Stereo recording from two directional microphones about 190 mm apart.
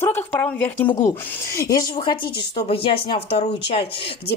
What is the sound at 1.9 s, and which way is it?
A woman's voice, 30° left (ahead or behind).